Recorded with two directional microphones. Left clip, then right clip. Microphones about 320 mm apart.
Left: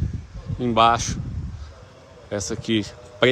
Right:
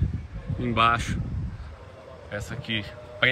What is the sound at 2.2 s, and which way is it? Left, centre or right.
Speech, centre.